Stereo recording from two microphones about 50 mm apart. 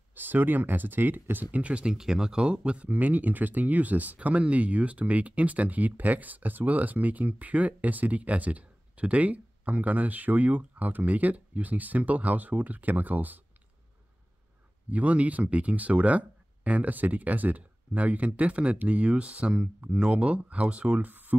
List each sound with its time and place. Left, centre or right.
0.1 s speech: right
2.0 s speech: centre; by 13.4 s right
14.9 s speech: right
21.1 s a sound: right